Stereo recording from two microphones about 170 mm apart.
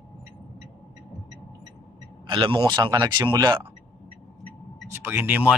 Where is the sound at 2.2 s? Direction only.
30° right (ahead or behind).